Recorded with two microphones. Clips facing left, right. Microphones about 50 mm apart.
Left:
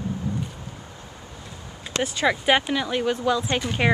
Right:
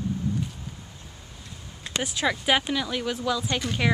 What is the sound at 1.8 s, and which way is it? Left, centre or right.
Speech, centre.